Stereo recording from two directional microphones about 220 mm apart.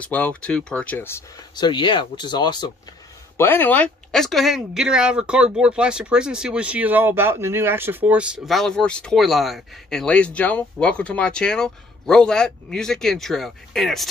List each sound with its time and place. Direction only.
0.0 s speech: 5° left (ahead or behind)
1.7 s speech: 20° left (ahead or behind)
3.3 s speech: 10° left (ahead or behind)